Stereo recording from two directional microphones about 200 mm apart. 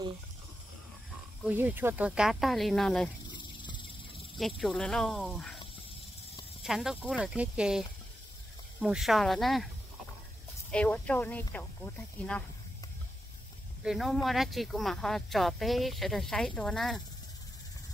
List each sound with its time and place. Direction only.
1.4 s speech: 10° right (ahead or behind)
3.3 s a sound: 25° left (ahead or behind)
4.4 s speech: centre (ahead or behind)
6.6 s speech: centre (ahead or behind)
8.8 s speech: centre (ahead or behind)
10.7 s speech: 5° left (ahead or behind)
13.8 s speech: centre (ahead or behind)